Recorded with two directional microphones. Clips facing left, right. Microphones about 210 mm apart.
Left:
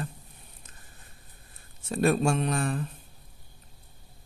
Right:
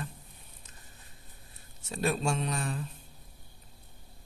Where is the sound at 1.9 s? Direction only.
55° left (ahead or behind).